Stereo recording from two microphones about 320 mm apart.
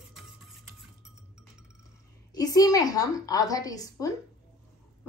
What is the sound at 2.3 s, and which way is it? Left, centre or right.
A woman's voice, centre.